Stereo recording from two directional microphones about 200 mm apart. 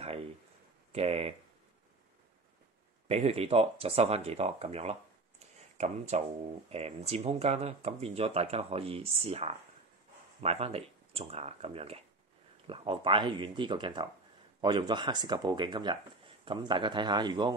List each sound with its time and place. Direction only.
0.0 s a sound: 30° right (ahead or behind)
0.9 s speech: 30° right (ahead or behind)
3.1 s speech: 30° right (ahead or behind)